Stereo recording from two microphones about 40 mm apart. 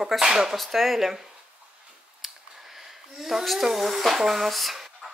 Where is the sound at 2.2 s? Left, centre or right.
Centre.